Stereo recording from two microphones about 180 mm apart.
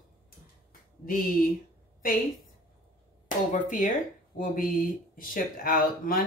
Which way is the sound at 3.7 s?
45° left (ahead or behind).